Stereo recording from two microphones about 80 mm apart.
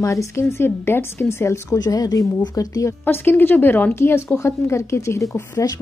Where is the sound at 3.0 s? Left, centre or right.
Left.